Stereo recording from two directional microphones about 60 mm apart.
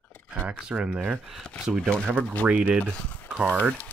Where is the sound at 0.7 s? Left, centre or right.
Centre.